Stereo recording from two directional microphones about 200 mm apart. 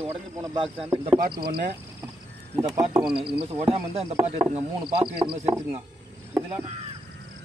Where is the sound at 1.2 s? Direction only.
50° right (ahead or behind).